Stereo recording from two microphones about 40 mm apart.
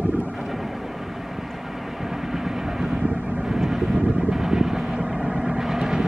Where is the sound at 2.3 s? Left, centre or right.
Centre.